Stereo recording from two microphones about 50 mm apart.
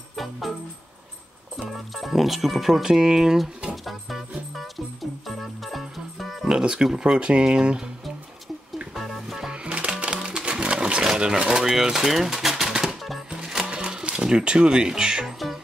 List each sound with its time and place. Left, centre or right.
0.1 s music: centre
1.6 s speech: centre
3.7 s music: centre
6.4 s speech: centre
8.9 s music: centre
9.5 s music: right
15.2 s music: centre